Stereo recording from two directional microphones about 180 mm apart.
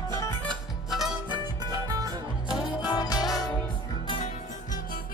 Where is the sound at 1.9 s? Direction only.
20° right (ahead or behind).